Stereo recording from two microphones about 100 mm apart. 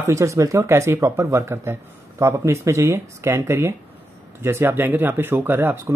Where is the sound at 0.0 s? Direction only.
30° right (ahead or behind).